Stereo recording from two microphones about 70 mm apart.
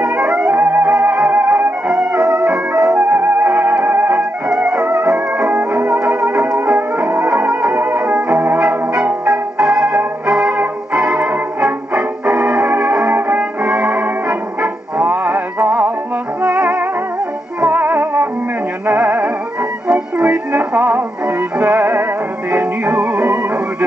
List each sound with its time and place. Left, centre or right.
0.0 s music: centre
0.5 s music: right
1.9 s music: centre
2.9 s music: right
5.0 s music: centre
8.5 s music: centre
17.6 s music: right